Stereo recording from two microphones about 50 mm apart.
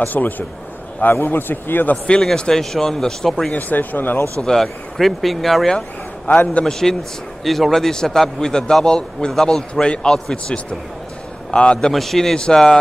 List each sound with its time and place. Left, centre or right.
0.0 s a man's voice: left
2.3 s a man's voice: centre
3.5 s a man's voice: left
4.4 s speech: centre
6.2 s a man's voice: left
6.6 s a man's voice: centre
10.3 s speech: left
11.9 s speech: centre
12.4 s a man's voice: centre